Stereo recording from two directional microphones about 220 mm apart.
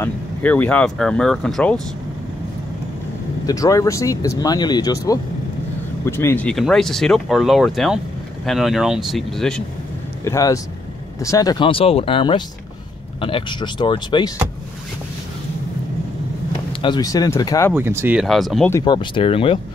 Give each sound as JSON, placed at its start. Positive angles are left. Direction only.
{"t": 0.0, "sound": "speech", "side_deg": 5}
{"t": 3.4, "sound": "speech", "side_deg": 15}
{"t": 6.0, "sound": "speech", "side_deg": 10}
{"t": 10.2, "sound": "speech", "side_deg": 15}
{"t": 16.8, "sound": "speech", "side_deg": 20}
{"t": 17.7, "sound": "speech", "side_deg": -10}
{"t": 18.7, "sound": "speech", "side_deg": 15}